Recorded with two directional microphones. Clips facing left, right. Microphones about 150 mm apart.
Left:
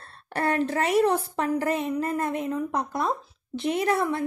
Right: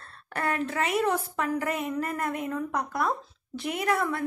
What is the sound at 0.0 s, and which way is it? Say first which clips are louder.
A woman's voice: left 4 dB; 30° left (ahead or behind).